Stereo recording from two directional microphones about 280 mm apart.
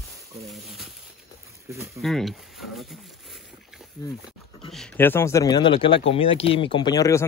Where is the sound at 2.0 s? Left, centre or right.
Centre.